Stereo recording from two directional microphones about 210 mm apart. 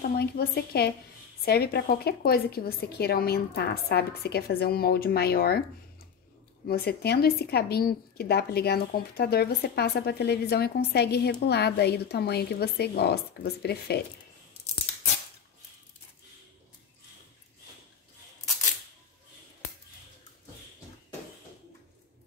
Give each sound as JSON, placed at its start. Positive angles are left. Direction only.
{"t": 0.0, "sound": "a woman's voice", "side_deg": 50}
{"t": 6.7, "sound": "a woman's voice", "side_deg": 50}